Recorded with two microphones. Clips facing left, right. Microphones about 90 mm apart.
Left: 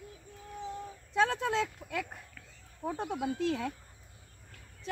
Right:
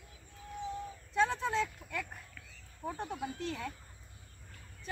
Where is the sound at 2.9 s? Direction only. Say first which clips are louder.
Left 5 dB; 90° left.